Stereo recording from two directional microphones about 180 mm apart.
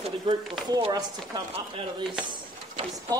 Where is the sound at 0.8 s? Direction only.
20° right (ahead or behind).